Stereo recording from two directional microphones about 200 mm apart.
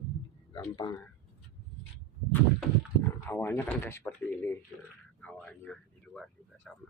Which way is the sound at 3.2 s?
10° left (ahead or behind).